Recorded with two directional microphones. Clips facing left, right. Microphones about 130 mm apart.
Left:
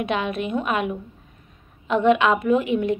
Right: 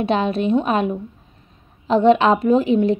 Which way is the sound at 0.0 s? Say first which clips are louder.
Right 5 dB; 30° right (ahead or behind).